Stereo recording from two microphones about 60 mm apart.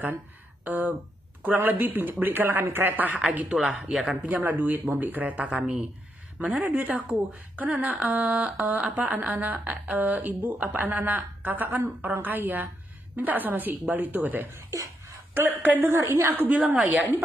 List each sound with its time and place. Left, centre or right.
0.7 s speech: right
3.5 s speech: centre
4.1 s speech: right
6.6 s speech: right
15.9 s speech: right